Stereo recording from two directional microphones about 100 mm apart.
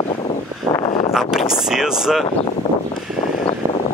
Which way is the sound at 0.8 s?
60° left (ahead or behind).